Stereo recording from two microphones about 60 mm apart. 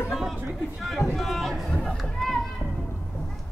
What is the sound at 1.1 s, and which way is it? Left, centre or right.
Run, centre.